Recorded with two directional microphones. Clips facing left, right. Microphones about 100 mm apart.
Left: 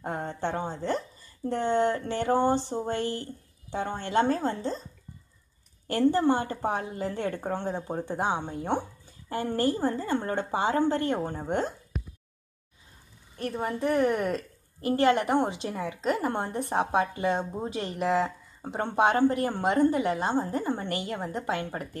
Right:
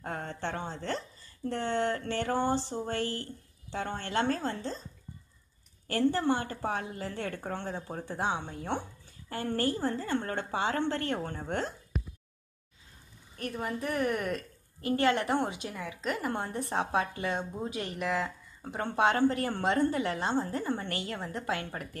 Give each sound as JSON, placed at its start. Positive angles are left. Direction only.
{"t": 0.0, "sound": "speech", "side_deg": 15}
{"t": 5.9, "sound": "a woman's voice", "side_deg": 20}
{"t": 13.4, "sound": "a woman's voice", "side_deg": 30}